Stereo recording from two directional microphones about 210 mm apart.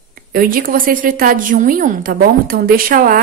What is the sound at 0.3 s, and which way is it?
A woman's voice, 40° right (ahead or behind).